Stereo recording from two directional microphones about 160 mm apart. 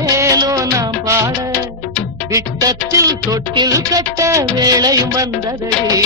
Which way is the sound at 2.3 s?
20° right (ahead or behind).